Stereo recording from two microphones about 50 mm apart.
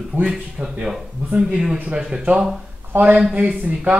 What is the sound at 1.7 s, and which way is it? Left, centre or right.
A man's voice, right.